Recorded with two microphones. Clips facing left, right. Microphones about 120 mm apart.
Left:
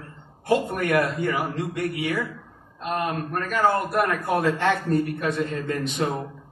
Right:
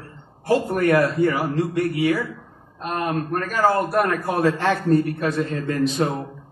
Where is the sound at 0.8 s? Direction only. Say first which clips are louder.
Right 5 dB; 30° right (ahead or behind).